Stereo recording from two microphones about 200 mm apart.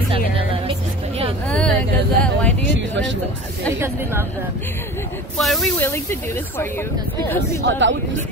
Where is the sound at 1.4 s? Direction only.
5° left (ahead or behind).